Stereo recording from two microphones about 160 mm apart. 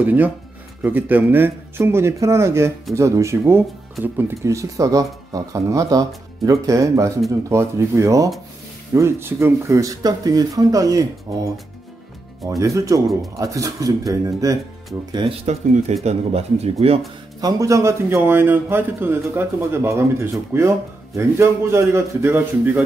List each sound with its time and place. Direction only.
0.0 s speech: 10° right (ahead or behind)
15.4 s speech: 45° right (ahead or behind)
17.4 s speech: 20° right (ahead or behind)